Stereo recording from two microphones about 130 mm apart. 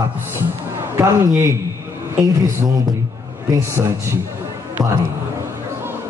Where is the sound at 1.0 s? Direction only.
20° right (ahead or behind).